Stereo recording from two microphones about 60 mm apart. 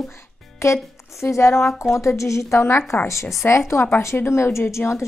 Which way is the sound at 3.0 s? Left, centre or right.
Left.